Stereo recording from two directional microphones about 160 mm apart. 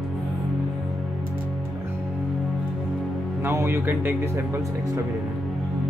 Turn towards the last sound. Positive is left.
turn(degrees=-15)  # may be behind; listen again after turning